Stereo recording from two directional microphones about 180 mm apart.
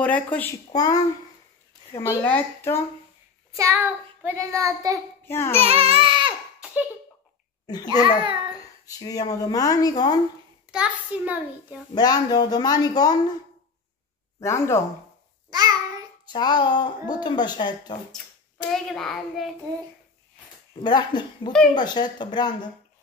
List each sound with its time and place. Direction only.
0.0 s speech: 10° left (ahead or behind)
0.7 s a woman's voice: 20° left (ahead or behind)
3.5 s child singing: 15° right (ahead or behind)
4.6 s a child's voice: 20° right (ahead or behind)
5.2 s child singing: 15° left (ahead or behind)
5.6 s child singing: 35° right (ahead or behind)
6.6 s a sound: 10° right (ahead or behind)
7.6 s speech: 20° left (ahead or behind)
10.7 s a child's voice: 5° right (ahead or behind)
11.9 s speech: 20° left (ahead or behind)
14.4 s a woman's voice: 15° left (ahead or behind)
16.3 s speech: 25° left (ahead or behind)
18.7 s a child's voice: 5° left (ahead or behind)
20.8 s speech: 25° left (ahead or behind)